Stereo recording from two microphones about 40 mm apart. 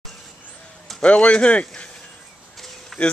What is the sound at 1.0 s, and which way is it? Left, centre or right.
Speech, left.